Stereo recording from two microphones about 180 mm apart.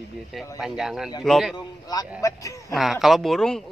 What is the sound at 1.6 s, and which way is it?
Speech, 20° left (ahead or behind).